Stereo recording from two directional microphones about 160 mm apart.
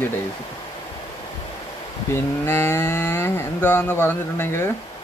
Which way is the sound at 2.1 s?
15° left (ahead or behind).